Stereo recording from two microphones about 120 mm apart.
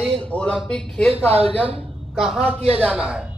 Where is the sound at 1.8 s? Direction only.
Centre (ahead or behind).